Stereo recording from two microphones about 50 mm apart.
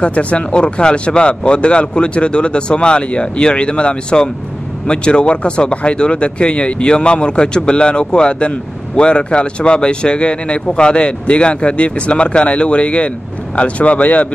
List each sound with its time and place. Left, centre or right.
0.0 s speech: left